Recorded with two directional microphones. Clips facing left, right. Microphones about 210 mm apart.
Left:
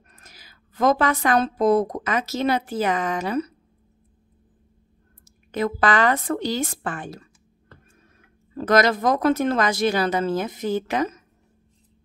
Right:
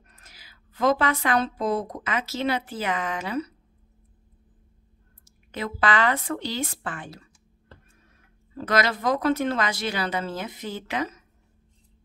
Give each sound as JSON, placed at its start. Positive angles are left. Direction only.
{"t": 0.1, "sound": "a woman's voice", "side_deg": 45}
{"t": 5.2, "sound": "speech", "side_deg": 45}
{"t": 8.5, "sound": "speech", "side_deg": 45}